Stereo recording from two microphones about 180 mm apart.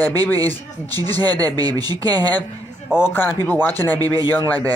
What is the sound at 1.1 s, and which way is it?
Speech, 10° left (ahead or behind).